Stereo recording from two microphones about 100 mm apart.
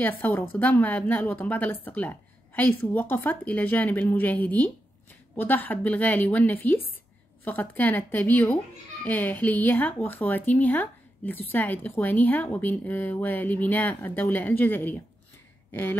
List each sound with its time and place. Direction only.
0.0 s speech: 20° left (ahead or behind)